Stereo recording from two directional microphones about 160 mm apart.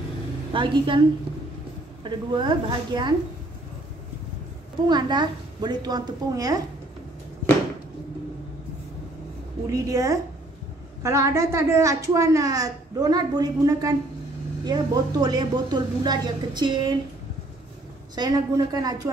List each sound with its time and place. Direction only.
0.5 s a woman's voice: 30° right (ahead or behind)
2.0 s a woman's voice: 30° right (ahead or behind)
4.8 s a woman's voice: 25° right (ahead or behind)
9.7 s a woman's voice: 20° right (ahead or behind)
18.1 s a woman's voice: 25° right (ahead or behind)